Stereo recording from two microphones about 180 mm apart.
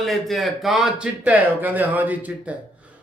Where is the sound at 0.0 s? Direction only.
Centre (ahead or behind).